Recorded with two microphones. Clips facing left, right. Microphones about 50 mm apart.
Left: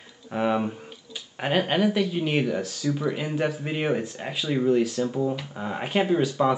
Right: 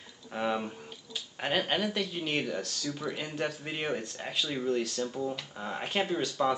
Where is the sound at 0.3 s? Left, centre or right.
Centre.